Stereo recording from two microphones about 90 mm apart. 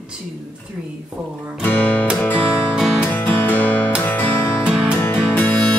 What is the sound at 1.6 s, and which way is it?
Music, 15° left (ahead or behind).